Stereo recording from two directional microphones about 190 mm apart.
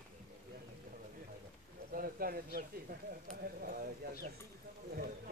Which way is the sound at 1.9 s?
50° right (ahead or behind).